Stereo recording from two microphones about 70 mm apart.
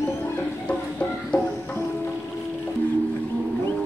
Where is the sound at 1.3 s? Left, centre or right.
Centre.